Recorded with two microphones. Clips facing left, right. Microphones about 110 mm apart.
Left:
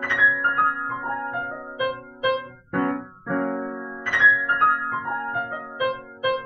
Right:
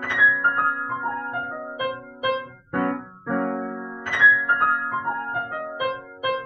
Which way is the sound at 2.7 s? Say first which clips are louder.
Left 1 dB; 20° right (ahead or behind).